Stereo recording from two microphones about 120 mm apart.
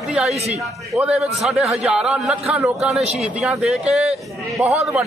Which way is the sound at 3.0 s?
65° right (ahead or behind).